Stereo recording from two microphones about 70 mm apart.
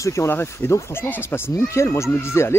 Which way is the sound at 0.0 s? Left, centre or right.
Left.